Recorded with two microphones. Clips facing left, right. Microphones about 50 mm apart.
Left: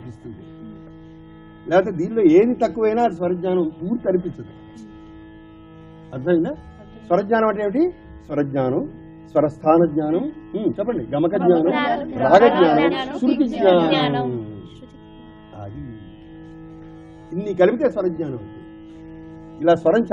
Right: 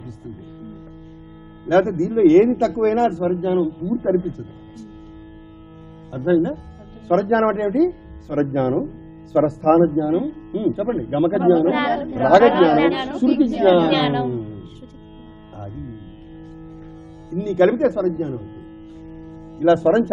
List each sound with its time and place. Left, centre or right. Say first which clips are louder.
1.7 s a man's voice: right 1 dB; centre
6.1 s a man's voice: right 1 dB; centre
10.8 s a man's voice: even; centre
15.5 s music: right 1 dB; centre
17.3 s speech: right 1 dB; centre
17.6 s a man's voice: even; centre
18.1 s speech: right 1 dB; centre
19.6 s a man's voice: even; centre